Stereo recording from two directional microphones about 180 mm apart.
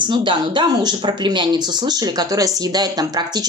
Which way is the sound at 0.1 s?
25° right (ahead or behind).